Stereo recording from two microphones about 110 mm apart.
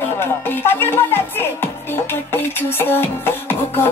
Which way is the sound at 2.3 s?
20° left (ahead or behind).